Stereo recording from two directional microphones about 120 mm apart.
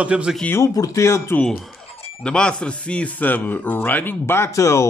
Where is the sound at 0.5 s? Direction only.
25° left (ahead or behind).